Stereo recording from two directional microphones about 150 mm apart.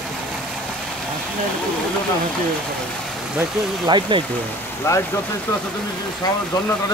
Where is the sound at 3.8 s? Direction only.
30° right (ahead or behind).